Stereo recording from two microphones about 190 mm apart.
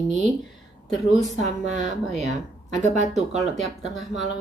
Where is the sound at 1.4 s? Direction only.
40° right (ahead or behind).